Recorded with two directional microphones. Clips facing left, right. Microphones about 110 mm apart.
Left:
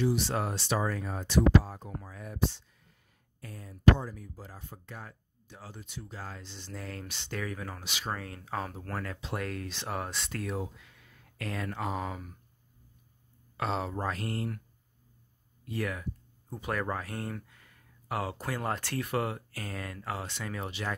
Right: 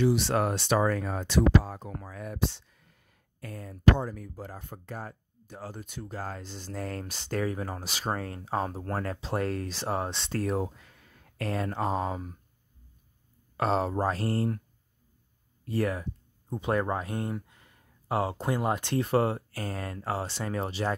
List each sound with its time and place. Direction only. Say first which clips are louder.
0.0 s speech: right 4 dB; 80° right; by 10.2 s 30° right (ahead or behind)
10.3 s speech: right 8 dB; 40° right (ahead or behind)
13.6 s speech: right 6 dB; 40° right (ahead or behind)
15.6 s speech: right 6 dB; 35° right (ahead or behind)
16.4 s speech: right 5 dB; 25° right (ahead or behind)